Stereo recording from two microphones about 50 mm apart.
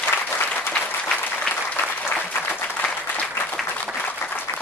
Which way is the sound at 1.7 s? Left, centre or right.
Left.